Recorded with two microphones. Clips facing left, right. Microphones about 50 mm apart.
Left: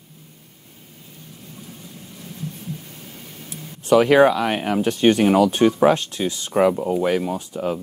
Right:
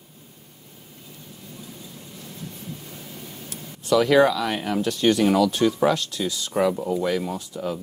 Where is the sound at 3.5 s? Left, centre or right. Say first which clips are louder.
Left 5 dB; left.